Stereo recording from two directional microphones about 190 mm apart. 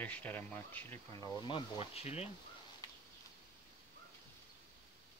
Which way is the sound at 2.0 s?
35° left (ahead or behind).